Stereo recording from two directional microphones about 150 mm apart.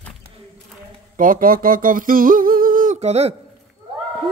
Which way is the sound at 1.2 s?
65° right (ahead or behind).